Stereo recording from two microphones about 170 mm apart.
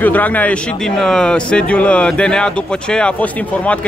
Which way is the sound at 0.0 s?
10° left (ahead or behind).